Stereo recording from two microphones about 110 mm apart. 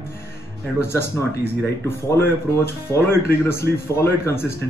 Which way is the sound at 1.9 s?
20° left (ahead or behind).